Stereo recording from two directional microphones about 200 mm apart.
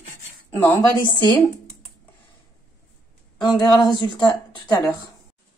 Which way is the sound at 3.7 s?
20° left (ahead or behind).